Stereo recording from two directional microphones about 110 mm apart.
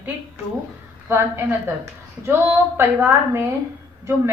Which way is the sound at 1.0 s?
20° right (ahead or behind).